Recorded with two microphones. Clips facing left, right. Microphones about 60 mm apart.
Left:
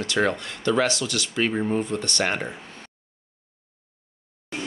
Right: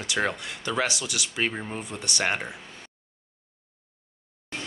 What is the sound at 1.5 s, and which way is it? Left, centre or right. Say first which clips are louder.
Speech: left 10 dB; centre.